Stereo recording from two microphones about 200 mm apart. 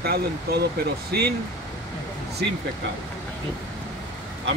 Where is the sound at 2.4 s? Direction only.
55° right (ahead or behind).